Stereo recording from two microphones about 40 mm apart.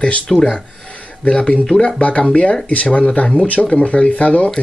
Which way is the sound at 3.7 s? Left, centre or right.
Left.